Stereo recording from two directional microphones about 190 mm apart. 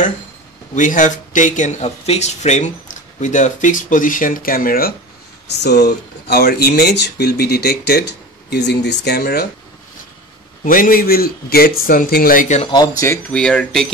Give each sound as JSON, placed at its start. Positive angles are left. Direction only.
{"t": 0.7, "sound": "speech", "side_deg": 40}
{"t": 5.5, "sound": "speech", "side_deg": 60}
{"t": 10.6, "sound": "a man's voice", "side_deg": 45}
{"t": 12.6, "sound": "speech", "side_deg": 20}